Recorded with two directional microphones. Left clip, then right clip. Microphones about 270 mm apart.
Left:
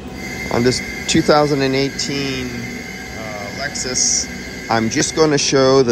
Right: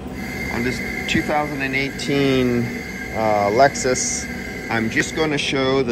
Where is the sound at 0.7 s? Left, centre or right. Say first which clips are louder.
Left 4 dB; centre.